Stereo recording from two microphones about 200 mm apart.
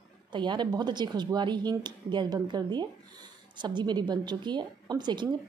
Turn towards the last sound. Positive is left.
turn(degrees=-20)  # may be behind; listen again after turning